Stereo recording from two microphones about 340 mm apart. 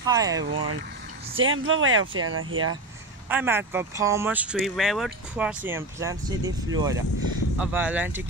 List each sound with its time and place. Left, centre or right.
0.0 s speech: centre
0.4 s speech: right
3.3 s speech: centre